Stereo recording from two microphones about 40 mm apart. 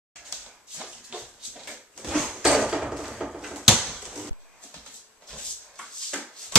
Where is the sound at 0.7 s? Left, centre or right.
Centre.